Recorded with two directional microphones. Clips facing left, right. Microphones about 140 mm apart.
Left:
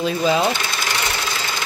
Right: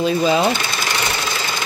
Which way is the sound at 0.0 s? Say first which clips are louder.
Right 2 dB; centre (ahead or behind).